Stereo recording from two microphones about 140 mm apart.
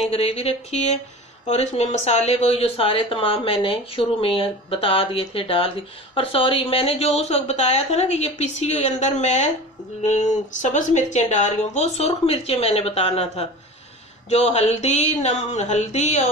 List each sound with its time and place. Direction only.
0.0 s speech: 45° left (ahead or behind)